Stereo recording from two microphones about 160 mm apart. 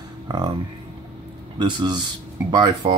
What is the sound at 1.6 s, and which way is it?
Speech, 25° right (ahead or behind).